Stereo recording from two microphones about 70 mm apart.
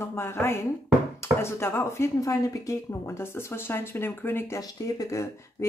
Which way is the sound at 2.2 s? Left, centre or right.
Left.